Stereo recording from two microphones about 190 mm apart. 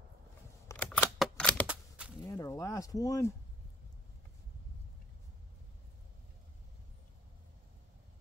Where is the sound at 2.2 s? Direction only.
15° left (ahead or behind).